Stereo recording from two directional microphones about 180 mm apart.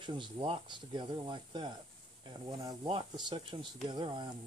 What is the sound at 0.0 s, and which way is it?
Speech, 25° right (ahead or behind).